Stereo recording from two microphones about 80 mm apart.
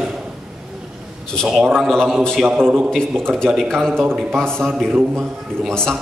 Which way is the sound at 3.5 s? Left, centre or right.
Centre.